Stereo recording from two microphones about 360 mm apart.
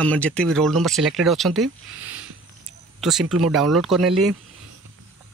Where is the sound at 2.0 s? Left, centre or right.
Right.